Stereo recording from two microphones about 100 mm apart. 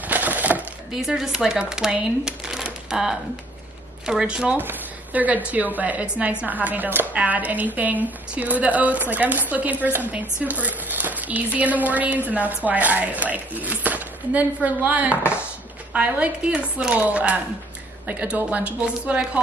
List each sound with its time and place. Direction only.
0.0 s coin: 15° right (ahead or behind)
0.9 s a woman's voice: 5° right (ahead or behind)